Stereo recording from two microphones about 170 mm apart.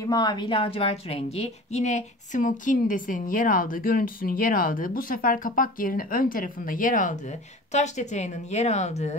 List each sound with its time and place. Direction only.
0.0 s a woman's voice: 25° left (ahead or behind); by 9.1 s 40° left (ahead or behind)